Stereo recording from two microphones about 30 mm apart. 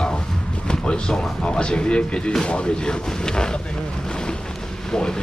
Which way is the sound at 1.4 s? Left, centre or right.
Left.